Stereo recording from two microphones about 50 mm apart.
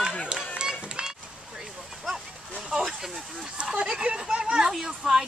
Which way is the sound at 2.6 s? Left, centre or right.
Centre.